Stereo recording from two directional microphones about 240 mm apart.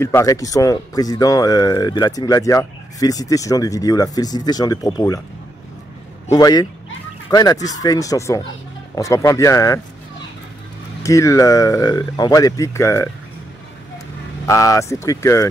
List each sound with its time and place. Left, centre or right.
0.0 s speech: centre
6.3 s speech: centre
11.0 s speech: centre
14.5 s speech: centre